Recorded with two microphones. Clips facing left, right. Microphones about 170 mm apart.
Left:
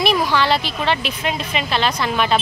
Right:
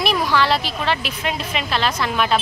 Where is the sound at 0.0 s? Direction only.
Centre (ahead or behind).